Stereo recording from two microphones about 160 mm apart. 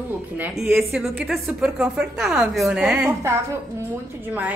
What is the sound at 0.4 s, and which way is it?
Speech, 5° right (ahead or behind).